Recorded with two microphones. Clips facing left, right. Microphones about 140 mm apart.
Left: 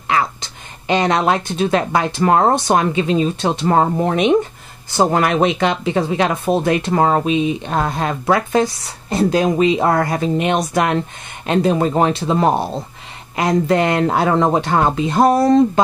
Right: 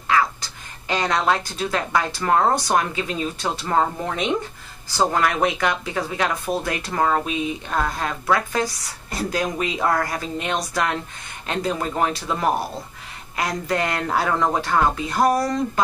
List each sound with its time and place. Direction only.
0.1 s a woman's voice: 20° left (ahead or behind)
3.6 s speech: 40° left (ahead or behind)
4.0 s speech: 20° left (ahead or behind)